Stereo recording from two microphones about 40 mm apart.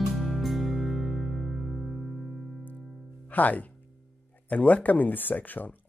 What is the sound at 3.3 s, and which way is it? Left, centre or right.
Speech, left.